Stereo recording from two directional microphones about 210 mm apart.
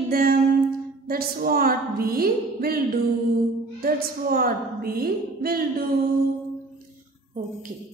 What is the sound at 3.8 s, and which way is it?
A woman's voice, 45° right (ahead or behind).